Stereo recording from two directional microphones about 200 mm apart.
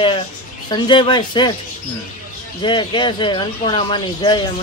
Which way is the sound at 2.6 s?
25° left (ahead or behind).